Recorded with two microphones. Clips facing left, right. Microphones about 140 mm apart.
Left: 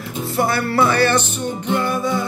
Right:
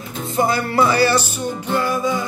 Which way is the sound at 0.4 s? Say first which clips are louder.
Right 1 dB; 15° right (ahead or behind).